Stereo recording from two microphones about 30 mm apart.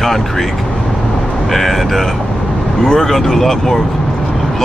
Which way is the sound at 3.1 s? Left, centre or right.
Centre.